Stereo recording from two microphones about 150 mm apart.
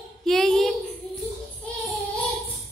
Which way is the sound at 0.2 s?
5° left (ahead or behind).